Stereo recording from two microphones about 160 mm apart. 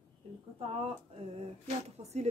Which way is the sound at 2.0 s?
45° right (ahead or behind).